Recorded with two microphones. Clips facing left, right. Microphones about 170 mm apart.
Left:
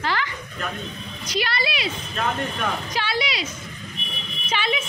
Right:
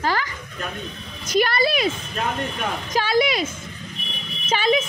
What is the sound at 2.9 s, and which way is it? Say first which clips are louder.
Speech: right 6 dB; 45° right (ahead or behind).